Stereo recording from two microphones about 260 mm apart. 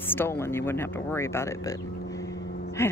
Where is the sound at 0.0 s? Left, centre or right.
Centre.